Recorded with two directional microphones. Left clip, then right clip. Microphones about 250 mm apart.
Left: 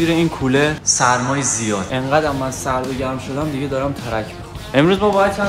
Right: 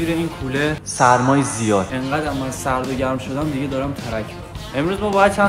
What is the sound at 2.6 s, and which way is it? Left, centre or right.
Speech, centre.